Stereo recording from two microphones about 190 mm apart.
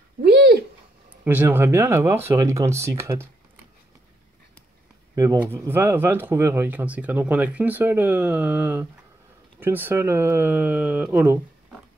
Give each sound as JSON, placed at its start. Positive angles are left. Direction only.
{"t": 0.2, "sound": "a sound", "side_deg": -55}
{"t": 1.2, "sound": "speech", "side_deg": -10}
{"t": 5.1, "sound": "speech", "side_deg": -15}